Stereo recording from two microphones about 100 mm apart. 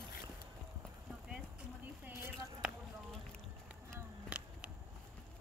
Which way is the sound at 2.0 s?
25° right (ahead or behind).